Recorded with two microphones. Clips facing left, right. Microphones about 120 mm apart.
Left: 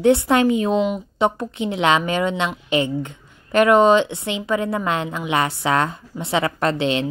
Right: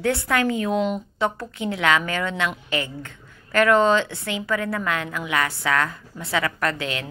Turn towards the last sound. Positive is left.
turn(degrees=25)  # may be behind; listen again after turning